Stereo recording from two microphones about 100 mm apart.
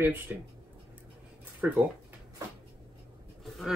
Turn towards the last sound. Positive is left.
turn(degrees=0)  # may be behind; listen again after turning